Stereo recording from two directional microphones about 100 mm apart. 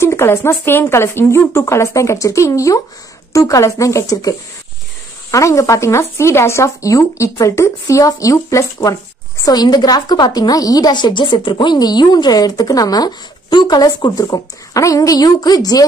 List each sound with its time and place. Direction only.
0.0 s speech: 25° left (ahead or behind)